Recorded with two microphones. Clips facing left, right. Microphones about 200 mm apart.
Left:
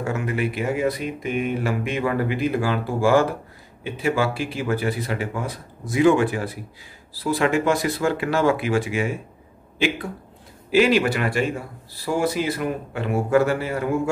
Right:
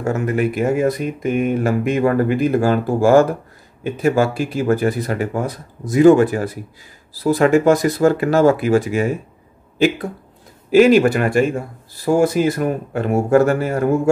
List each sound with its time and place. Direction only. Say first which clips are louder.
0.0 s speech: right 6 dB; 45° right (ahead or behind)
10.7 s speech: right 7 dB; 45° right (ahead or behind)